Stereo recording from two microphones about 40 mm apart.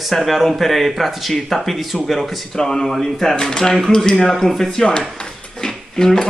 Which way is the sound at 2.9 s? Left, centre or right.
Centre.